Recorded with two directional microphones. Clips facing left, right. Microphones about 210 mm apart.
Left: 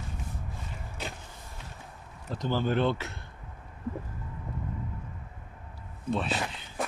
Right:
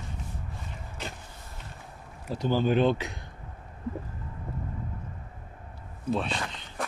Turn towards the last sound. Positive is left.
turn(degrees=10)  # may be behind; listen again after turning